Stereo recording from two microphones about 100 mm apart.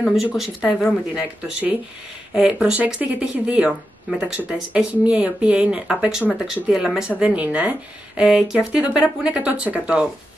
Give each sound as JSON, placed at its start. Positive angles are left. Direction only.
{"t": 0.0, "sound": "speech", "side_deg": 0}